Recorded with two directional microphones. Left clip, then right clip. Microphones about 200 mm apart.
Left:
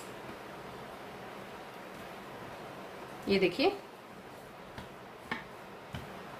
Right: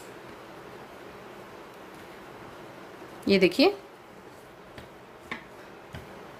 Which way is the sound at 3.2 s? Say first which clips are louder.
Right 7 dB; 50° right (ahead or behind).